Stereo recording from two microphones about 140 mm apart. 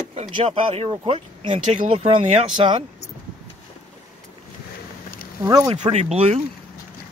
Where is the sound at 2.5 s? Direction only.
35° right (ahead or behind).